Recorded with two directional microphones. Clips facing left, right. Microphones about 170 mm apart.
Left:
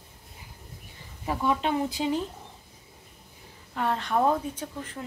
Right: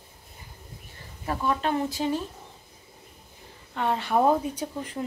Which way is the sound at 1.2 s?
10° left (ahead or behind).